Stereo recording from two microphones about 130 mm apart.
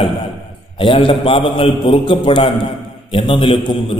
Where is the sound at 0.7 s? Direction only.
45° left (ahead or behind).